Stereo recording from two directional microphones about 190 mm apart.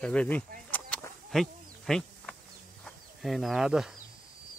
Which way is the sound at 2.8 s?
Centre (ahead or behind).